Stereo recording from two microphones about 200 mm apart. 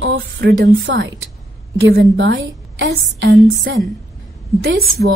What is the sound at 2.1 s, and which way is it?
A woman's voice, 65° right (ahead or behind).